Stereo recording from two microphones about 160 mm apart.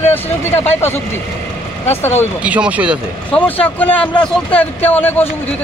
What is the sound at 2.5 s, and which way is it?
Speech, 10° right (ahead or behind).